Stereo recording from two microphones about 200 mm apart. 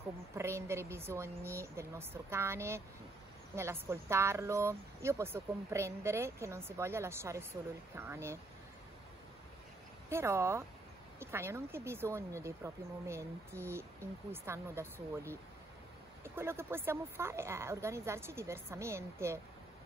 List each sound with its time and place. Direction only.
0.4 s speech: 15° right (ahead or behind)
10.0 s speech: 15° right (ahead or behind)
16.3 s speech: 10° right (ahead or behind)